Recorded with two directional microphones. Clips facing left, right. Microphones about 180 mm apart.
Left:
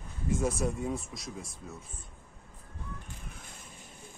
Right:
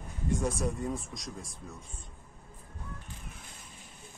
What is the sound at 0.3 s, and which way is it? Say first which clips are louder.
Speech: left 1 dB; 5° left (ahead or behind).